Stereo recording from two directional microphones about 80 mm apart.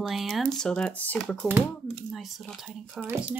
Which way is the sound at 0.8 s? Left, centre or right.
Centre.